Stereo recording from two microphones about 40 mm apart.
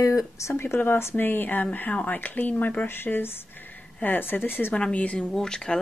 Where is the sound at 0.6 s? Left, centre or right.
Left.